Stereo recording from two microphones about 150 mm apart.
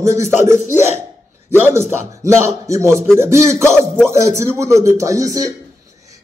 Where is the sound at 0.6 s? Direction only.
55° left (ahead or behind).